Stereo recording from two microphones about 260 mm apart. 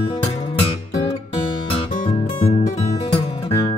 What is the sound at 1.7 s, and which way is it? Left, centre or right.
Music, left.